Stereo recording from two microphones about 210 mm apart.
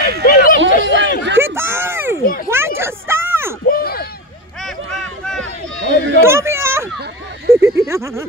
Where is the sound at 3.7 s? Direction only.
45° left (ahead or behind).